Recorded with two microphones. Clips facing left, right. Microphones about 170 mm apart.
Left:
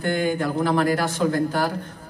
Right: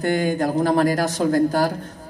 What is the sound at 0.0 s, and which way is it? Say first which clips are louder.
Speech: right 2 dB; 40° right (ahead or behind).